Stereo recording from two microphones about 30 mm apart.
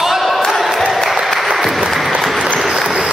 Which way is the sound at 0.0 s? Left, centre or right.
Centre.